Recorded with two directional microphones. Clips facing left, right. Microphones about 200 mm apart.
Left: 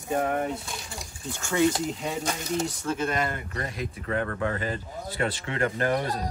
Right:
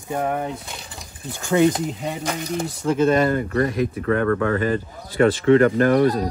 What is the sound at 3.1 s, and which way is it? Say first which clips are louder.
Speech: right 11 dB; 35° right (ahead or behind).